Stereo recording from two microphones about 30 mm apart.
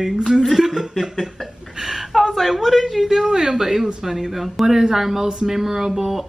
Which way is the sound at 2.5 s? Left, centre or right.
Centre.